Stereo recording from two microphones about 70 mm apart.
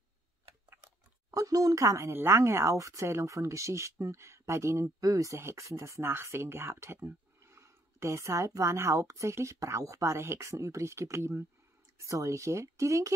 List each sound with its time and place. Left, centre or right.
1.3 s speech: right
2.0 s speech: right
12.0 s speech: right